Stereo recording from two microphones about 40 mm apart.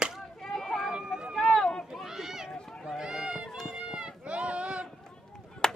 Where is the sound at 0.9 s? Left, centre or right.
Right.